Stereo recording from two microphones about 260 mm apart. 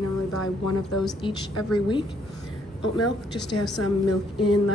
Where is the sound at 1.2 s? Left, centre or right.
Centre.